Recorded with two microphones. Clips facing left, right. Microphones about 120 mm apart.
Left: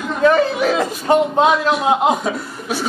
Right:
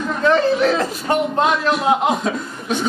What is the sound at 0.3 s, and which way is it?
A man's voice, 10° left (ahead or behind).